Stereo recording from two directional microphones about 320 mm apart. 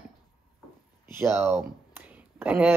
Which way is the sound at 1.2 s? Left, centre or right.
Centre.